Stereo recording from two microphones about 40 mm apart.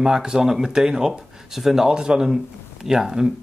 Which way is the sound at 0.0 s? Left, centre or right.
Centre.